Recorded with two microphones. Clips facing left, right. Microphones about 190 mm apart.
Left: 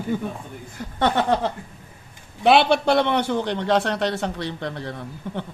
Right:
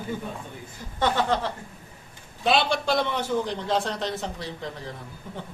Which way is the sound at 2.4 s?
65° left (ahead or behind).